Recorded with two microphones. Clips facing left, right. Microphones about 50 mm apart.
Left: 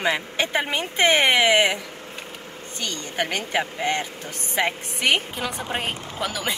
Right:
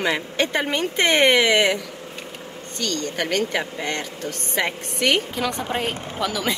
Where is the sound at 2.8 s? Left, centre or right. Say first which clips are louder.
Right 2 dB; centre.